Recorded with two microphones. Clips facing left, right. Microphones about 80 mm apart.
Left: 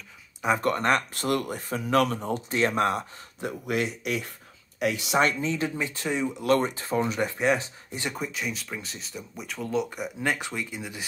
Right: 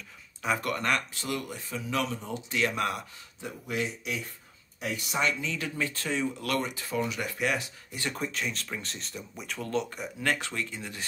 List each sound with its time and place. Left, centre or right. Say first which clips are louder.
0.6 s speech: left 5 dB; left
1.1 s speech: left 7 dB; left
3.3 s speech: left 5 dB; left
4.7 s speech: left 8 dB; left
5.2 s speech: left 4 dB; left
5.8 s speech: left 2 dB; centre
6.5 s speech: left 10 dB; left
8.1 s speech: even; centre